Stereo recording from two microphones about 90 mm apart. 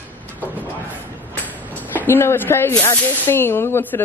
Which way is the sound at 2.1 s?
25° left (ahead or behind).